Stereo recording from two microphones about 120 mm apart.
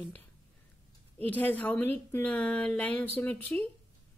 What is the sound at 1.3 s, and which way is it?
Speech, 15° left (ahead or behind).